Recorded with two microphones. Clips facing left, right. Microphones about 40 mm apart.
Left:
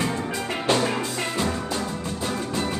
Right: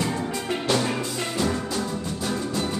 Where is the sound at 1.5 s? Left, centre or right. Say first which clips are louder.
Even; left.